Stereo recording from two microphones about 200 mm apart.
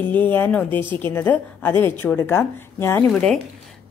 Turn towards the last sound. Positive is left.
turn(degrees=5)  # may be behind; listen again after turning